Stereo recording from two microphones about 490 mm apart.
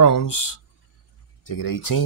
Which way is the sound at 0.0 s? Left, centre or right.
Left.